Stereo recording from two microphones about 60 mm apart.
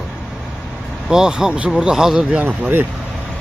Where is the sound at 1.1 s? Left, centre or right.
Centre.